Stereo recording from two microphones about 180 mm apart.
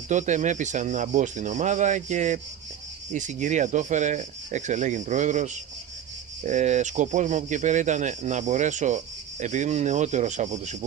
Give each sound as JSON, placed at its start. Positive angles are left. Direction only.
{"t": 0.1, "sound": "speech", "side_deg": -40}